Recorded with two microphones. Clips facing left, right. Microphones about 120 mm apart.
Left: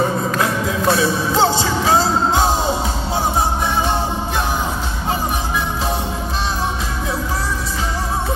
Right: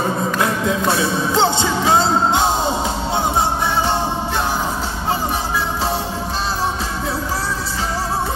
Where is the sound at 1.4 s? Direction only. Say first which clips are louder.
Left 1 dB; 25° right (ahead or behind).